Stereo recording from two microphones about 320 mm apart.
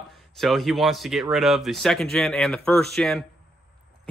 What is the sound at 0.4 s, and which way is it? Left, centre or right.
Speech, centre.